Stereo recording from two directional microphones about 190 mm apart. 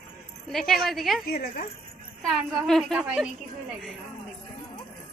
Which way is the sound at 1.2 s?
50° left (ahead or behind).